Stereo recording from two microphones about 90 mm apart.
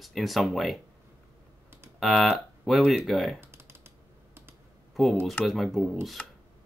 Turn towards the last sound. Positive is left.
turn(degrees=5)  # may be behind; listen again after turning